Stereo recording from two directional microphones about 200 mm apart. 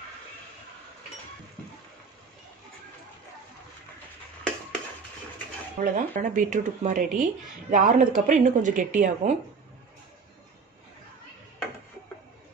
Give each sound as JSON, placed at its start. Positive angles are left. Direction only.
{"t": 5.8, "sound": "speech", "side_deg": -40}